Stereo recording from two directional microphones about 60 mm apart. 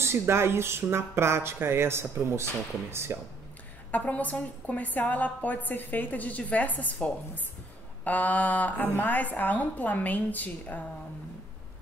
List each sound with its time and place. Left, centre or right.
0.0 s speech: right
3.9 s a woman's voice: left